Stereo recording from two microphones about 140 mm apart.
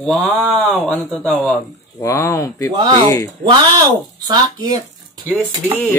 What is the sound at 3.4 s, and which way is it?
Speech, 30° right (ahead or behind).